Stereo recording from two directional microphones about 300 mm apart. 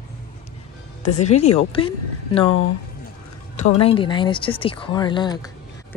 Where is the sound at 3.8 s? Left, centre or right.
Centre.